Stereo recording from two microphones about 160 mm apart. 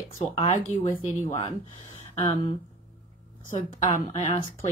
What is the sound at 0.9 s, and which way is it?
Speech, 15° left (ahead or behind).